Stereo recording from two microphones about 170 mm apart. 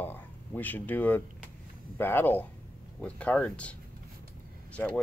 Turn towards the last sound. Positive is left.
turn(degrees=5)  # may be behind; listen again after turning